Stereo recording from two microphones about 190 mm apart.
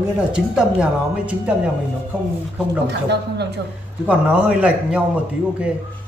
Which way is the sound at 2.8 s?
60° right (ahead or behind).